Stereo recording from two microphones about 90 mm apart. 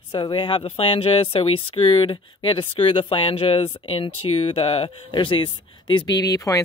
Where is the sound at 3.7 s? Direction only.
75° left (ahead or behind); by 6.1 s 60° left (ahead or behind).